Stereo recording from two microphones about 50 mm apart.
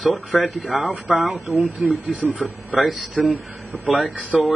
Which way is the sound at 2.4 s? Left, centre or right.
Centre.